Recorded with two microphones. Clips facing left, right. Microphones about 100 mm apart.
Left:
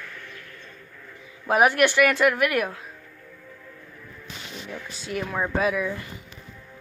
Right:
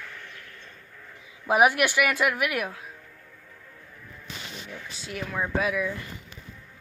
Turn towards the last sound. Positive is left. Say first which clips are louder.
# left 3 dB
turn(degrees=0)  # may be behind; listen again after turning